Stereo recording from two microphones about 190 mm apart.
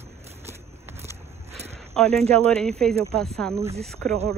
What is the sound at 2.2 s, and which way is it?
Speech, 35° right (ahead or behind).